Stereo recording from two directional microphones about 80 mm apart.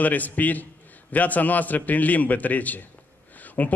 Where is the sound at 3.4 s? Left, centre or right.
Left.